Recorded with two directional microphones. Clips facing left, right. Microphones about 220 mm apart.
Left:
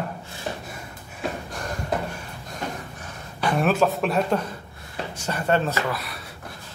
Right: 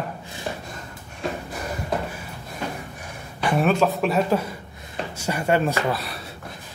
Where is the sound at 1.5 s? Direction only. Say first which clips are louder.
Right 1 dB; 5° right (ahead or behind).